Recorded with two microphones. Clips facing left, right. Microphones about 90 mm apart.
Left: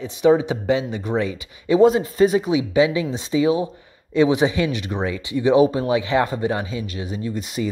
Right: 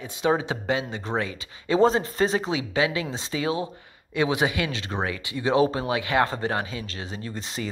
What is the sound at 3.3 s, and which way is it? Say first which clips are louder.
Speech: left 8 dB; 20° left (ahead or behind).